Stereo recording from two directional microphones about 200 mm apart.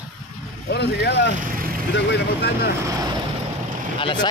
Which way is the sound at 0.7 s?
55° left (ahead or behind).